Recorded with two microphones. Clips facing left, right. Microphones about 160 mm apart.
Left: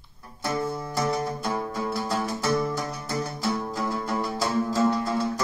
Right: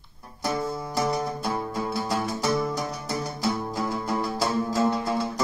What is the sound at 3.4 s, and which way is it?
Music, 15° right (ahead or behind).